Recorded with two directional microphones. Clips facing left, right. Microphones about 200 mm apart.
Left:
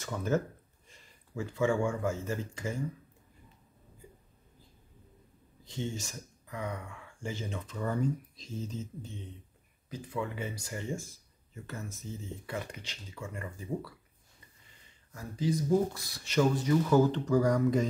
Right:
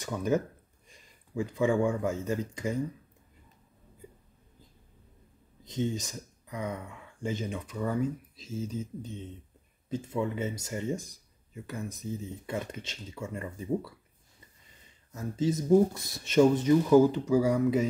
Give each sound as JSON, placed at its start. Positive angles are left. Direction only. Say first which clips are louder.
{"t": 0.0, "sound": "speech", "louder": "right 3 dB", "side_deg": -15}
{"t": 5.6, "sound": "speech", "louder": "right 6 dB", "side_deg": -20}
{"t": 15.1, "sound": "speech", "louder": "right 3 dB", "side_deg": -25}